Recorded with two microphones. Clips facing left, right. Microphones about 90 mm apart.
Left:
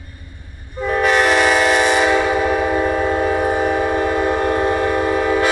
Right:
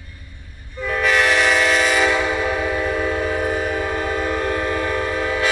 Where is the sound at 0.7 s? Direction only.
25° left (ahead or behind).